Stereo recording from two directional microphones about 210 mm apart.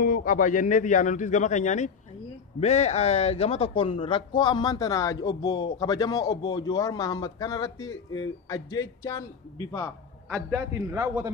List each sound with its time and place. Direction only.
0.0 s a man's voice: 40° left (ahead or behind); by 9.2 s 15° left (ahead or behind)
10.5 s a man's voice: 15° right (ahead or behind)